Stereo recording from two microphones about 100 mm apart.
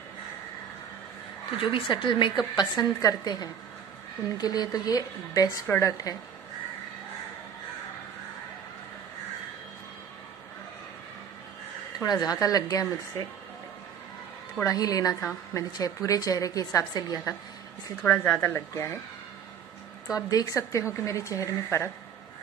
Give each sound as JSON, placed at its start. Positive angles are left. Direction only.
{"t": 1.6, "sound": "a woman's voice", "side_deg": 60}
{"t": 12.1, "sound": "speech", "side_deg": 40}
{"t": 14.6, "sound": "speech", "side_deg": 35}
{"t": 18.0, "sound": "a woman's voice", "side_deg": 15}
{"t": 20.2, "sound": "speech", "side_deg": 35}